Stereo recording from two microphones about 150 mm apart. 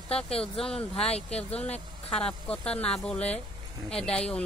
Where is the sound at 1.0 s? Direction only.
40° left (ahead or behind).